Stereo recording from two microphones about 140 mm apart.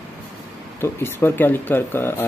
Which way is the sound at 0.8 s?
15° left (ahead or behind).